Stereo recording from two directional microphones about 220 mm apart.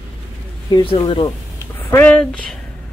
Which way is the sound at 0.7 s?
20° left (ahead or behind).